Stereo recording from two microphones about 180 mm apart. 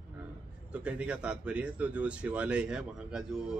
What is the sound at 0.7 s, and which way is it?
Speech, 5° right (ahead or behind).